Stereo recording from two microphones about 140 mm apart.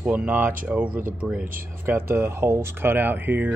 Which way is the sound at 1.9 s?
15° right (ahead or behind).